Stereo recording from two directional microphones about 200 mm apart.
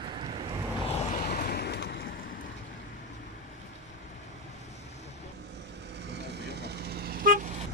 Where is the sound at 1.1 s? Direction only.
50° left (ahead or behind).